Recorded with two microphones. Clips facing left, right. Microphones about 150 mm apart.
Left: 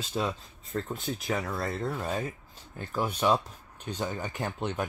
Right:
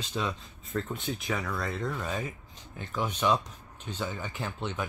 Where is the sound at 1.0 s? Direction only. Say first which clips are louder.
Left 1 dB; 40° left (ahead or behind).